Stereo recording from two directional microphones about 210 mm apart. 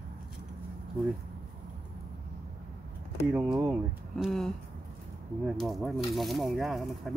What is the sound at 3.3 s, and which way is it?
Speech, 5° right (ahead or behind).